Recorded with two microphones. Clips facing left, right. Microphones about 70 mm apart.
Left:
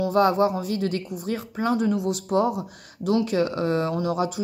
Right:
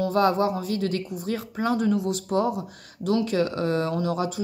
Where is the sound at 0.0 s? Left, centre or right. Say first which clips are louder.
Left 2 dB; centre.